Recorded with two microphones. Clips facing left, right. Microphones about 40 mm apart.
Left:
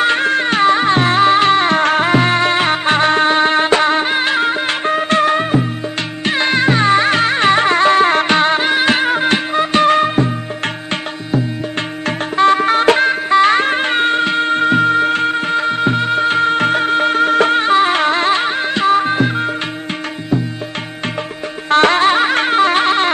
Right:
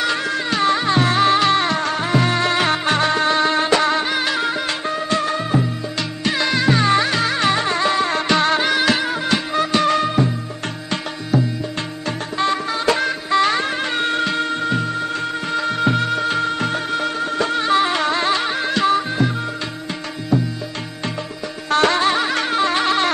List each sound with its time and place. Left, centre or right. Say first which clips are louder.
0.0 s music: left 7 dB; left
0.7 s music: left 3 dB; left
1.8 s music: left 6 dB; left
6.2 s music: left 4 dB; left
8.4 s music: left 3 dB; left
8.9 s music: left 5 dB; left
12.5 s music: left 7 dB; left
17.6 s music: left 5 dB; left
18.9 s music: left 5 dB; left
21.6 s music: left 5 dB; left